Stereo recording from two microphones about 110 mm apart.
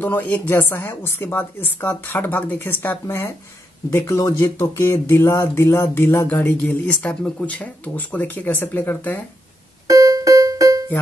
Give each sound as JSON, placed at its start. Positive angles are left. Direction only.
{"t": 0.0, "sound": "speech", "side_deg": 15}
{"t": 4.4, "sound": "speech", "side_deg": 20}
{"t": 9.8, "sound": "music", "side_deg": -30}